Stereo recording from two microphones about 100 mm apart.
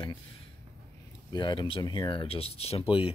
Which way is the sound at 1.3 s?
50° left (ahead or behind).